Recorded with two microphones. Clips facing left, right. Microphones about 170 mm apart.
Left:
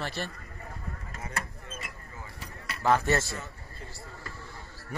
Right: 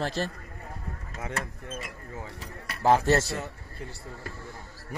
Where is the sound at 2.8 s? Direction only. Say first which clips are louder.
Right 3 dB; 35° right (ahead or behind).